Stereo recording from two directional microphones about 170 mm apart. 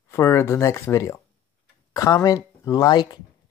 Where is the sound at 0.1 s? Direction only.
15° left (ahead or behind).